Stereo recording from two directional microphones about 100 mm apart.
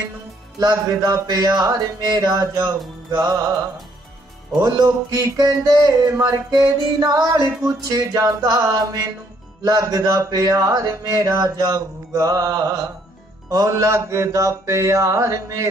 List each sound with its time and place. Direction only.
0.6 s speech: 40° right (ahead or behind)
4.6 s speech: 35° right (ahead or behind)